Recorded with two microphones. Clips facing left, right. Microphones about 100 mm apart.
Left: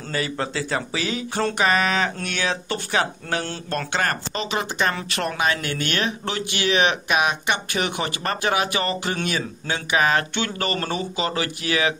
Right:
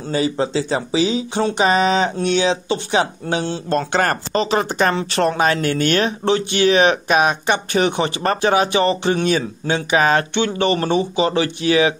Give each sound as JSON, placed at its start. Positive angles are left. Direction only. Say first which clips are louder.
{"t": 0.1, "sound": "speech", "louder": "right 7 dB", "side_deg": -25}
{"t": 3.9, "sound": "speech", "louder": "right 4 dB", "side_deg": -40}